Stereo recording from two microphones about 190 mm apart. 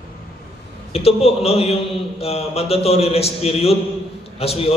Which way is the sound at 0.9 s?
30° left (ahead or behind).